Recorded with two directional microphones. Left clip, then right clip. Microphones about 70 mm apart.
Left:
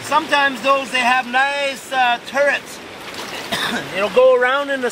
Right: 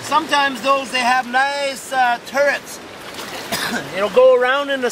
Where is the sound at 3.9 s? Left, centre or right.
Right.